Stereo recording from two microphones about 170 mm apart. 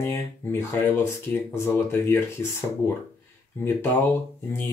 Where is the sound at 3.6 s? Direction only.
10° left (ahead or behind).